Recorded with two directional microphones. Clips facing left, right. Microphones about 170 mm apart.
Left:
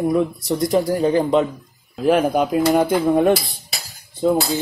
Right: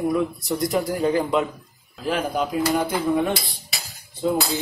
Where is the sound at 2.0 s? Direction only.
55° left (ahead or behind).